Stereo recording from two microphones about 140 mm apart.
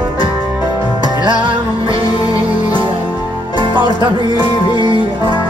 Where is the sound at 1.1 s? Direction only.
35° right (ahead or behind).